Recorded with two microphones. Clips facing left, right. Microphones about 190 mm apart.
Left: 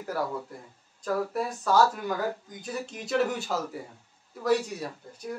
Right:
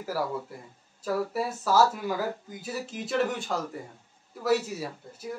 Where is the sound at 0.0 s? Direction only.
5° right (ahead or behind).